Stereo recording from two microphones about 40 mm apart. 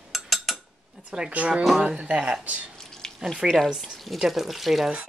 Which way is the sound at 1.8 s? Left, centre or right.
Right.